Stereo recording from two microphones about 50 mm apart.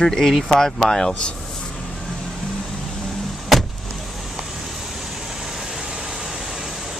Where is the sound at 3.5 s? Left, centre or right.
Centre.